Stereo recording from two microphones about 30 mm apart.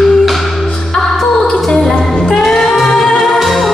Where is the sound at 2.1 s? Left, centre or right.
Left.